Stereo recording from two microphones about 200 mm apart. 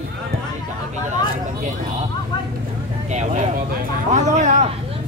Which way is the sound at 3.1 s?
35° right (ahead or behind).